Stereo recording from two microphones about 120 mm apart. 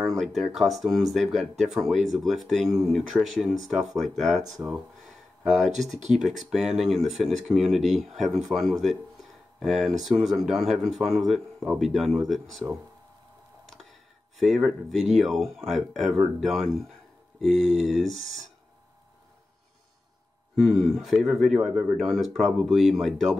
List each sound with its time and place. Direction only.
0.0 s speech: centre (ahead or behind)
4.6 s speech: 25° right (ahead or behind)
5.4 s speech: centre (ahead or behind)
14.4 s speech: centre (ahead or behind)
18.1 s speech: 70° right (ahead or behind)
20.5 s speech: centre (ahead or behind)